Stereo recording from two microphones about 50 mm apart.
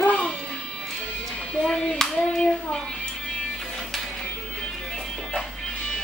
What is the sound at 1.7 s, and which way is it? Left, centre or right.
Clapping, centre.